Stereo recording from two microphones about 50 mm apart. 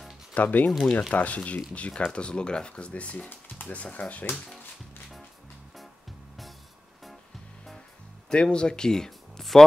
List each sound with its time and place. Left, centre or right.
0.3 s speech: left
0.7 s speech: centre
1.1 s speech: left
8.3 s speech: centre